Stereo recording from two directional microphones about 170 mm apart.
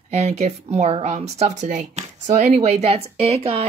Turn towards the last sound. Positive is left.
turn(degrees=-35)  # may be behind; listen again after turning